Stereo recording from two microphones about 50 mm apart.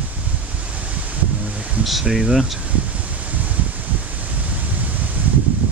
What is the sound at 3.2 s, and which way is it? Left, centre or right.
Rustling leaves, right.